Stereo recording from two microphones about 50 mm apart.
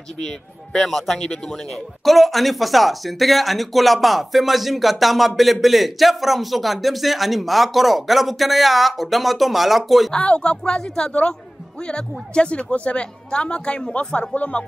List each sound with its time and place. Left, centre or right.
0.7 s a man's voice: centre
10.1 s a woman's voice: left